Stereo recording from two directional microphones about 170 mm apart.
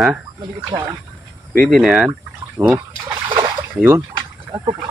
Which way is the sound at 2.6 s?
15° right (ahead or behind).